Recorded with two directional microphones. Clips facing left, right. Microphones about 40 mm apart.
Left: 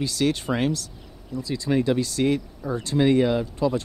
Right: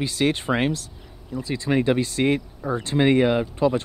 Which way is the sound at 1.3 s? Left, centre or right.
Right.